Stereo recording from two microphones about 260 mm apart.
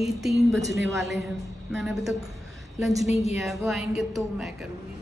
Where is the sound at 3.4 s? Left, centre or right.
Centre.